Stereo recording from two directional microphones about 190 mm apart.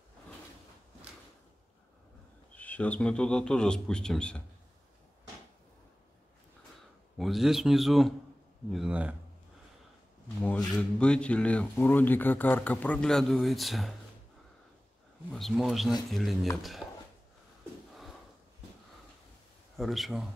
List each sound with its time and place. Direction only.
2.5 s a man's voice: 5° left (ahead or behind)
7.2 s a man's voice: centre (ahead or behind)
10.2 s speech: 5° left (ahead or behind)
15.3 s a man's voice: centre (ahead or behind)
16.8 s a sound: 20° left (ahead or behind)
19.8 s a man's voice: centre (ahead or behind)